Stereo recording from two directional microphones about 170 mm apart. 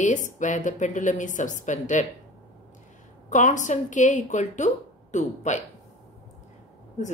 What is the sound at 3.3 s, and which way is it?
A woman's voice, 45° left (ahead or behind).